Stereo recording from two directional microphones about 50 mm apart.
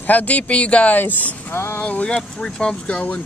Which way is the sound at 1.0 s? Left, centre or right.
Left.